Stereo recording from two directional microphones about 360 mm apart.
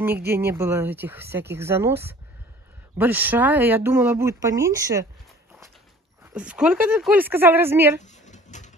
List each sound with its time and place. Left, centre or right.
0.3 s speech: centre
6.3 s speech: centre
8.0 s a sound: centre